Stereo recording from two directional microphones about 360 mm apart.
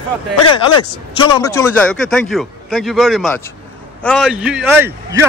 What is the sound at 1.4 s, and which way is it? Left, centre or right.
A man's voice, centre.